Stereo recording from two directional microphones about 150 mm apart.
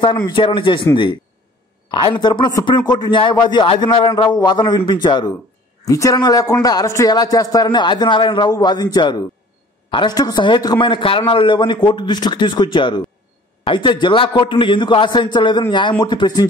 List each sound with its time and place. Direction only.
0.0 s a man's voice: 30° left (ahead or behind)
1.9 s a man's voice: 30° left (ahead or behind)